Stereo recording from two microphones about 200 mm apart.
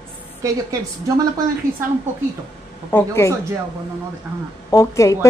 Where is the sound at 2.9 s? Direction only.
15° left (ahead or behind).